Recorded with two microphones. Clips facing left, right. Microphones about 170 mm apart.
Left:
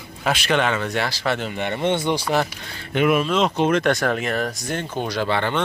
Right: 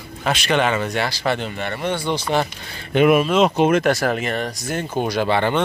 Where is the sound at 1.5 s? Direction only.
20° left (ahead or behind).